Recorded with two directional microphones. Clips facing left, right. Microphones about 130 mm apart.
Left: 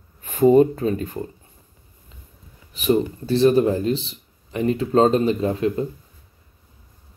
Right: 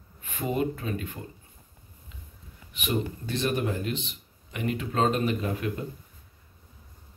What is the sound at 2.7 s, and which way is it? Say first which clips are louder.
Speech: left 10 dB; 35° left (ahead or behind).